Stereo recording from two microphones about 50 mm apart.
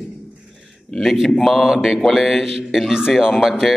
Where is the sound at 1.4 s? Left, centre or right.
Centre.